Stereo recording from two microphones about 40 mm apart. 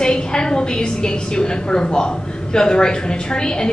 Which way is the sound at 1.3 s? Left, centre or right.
Centre.